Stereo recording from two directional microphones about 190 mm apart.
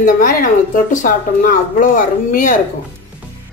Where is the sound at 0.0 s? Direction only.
45° left (ahead or behind).